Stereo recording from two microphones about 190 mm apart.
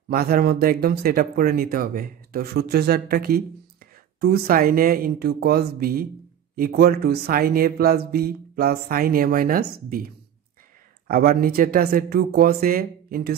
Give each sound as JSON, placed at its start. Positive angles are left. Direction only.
{"t": 0.1, "sound": "speech", "side_deg": -55}
{"t": 11.1, "sound": "speech", "side_deg": -50}